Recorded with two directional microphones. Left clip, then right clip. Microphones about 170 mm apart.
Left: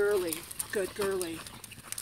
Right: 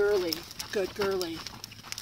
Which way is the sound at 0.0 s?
Centre (ahead or behind).